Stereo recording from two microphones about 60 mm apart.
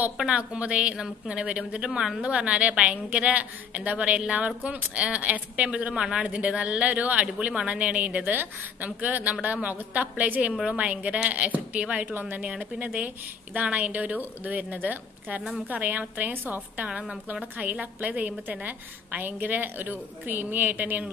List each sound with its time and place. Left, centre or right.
0.3 s a woman's voice: centre
1.9 s a woman's voice: centre
2.2 s a woman's voice: centre
12.1 s a woman's voice: right
12.4 s a woman's voice: right